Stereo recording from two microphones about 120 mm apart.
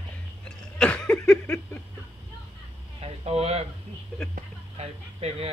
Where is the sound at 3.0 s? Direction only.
60° right (ahead or behind).